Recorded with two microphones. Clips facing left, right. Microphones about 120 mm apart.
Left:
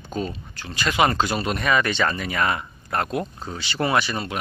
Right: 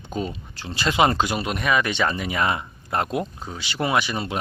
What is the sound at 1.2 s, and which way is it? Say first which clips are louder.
Speech: left 1 dB; 10° right (ahead or behind).